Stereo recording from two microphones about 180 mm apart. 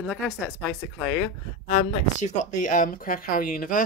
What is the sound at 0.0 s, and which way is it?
Speech, 10° right (ahead or behind).